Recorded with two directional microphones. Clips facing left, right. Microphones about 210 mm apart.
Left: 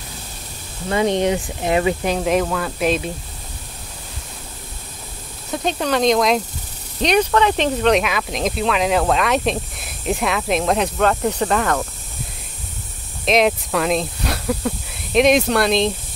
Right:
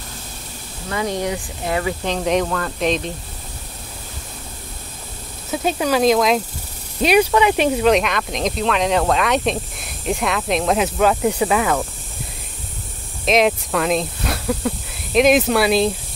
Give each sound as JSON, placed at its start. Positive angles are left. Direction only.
{"t": 0.8, "sound": "speech", "side_deg": 25}
{"t": 2.0, "sound": "speech", "side_deg": 5}
{"t": 5.5, "sound": "speech", "side_deg": -5}
{"t": 13.2, "sound": "speech", "side_deg": 0}